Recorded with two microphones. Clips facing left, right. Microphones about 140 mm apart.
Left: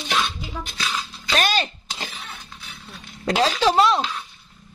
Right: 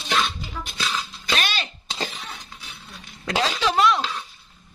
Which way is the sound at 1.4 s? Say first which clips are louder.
Left 10 dB; 45° left (ahead or behind).